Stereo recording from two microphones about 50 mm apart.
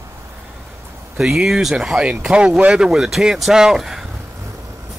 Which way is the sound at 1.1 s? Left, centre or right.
Centre.